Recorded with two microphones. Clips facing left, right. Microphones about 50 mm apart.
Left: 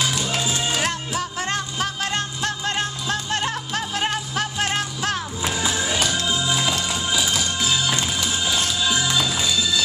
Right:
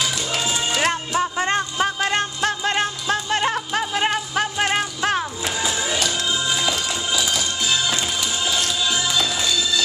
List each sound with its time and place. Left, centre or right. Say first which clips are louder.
0.4 s music: right 5 dB; centre
1.1 s music: right 5 dB; right
6.1 s music: even; centre